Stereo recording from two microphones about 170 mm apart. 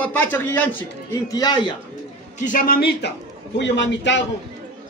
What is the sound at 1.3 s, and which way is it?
Speech, 25° left (ahead or behind).